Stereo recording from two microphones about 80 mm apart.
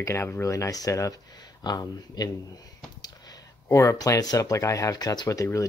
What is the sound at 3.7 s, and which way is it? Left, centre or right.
Speech, left.